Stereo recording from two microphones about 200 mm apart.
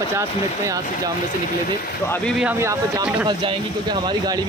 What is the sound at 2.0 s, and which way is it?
Speech, 10° left (ahead or behind).